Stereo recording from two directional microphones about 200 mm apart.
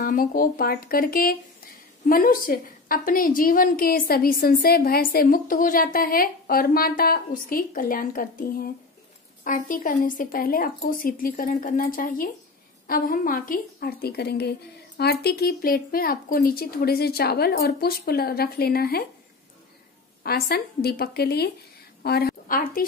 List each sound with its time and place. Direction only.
0.0 s a woman's voice: 45° left (ahead or behind)
20.2 s a woman's voice: 50° left (ahead or behind)